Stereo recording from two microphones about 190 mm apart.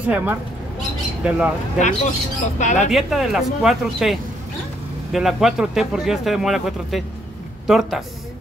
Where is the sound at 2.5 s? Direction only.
40° left (ahead or behind).